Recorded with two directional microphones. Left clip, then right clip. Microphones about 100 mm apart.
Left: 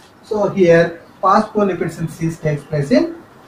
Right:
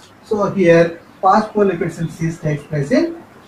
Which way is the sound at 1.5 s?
40° left (ahead or behind).